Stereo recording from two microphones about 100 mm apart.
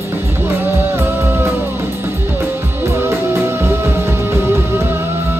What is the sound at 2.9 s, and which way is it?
Music, 25° right (ahead or behind).